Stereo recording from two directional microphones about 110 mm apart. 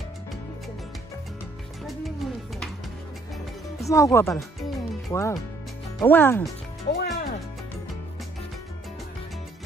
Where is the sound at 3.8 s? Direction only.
30° left (ahead or behind).